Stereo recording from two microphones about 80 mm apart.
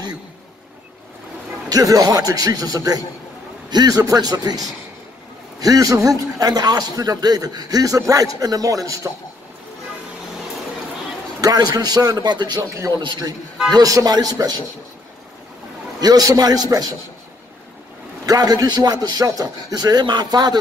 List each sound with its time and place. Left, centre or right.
1.7 s a man's voice: right
11.4 s a man's voice: right
12.6 s a man's voice: right
13.0 s a man's voice: right
13.7 s a man's voice: right
16.0 s a man's voice: right
18.2 s a man's voice: right